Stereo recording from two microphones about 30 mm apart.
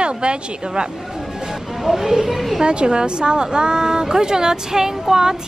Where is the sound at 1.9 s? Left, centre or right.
Centre.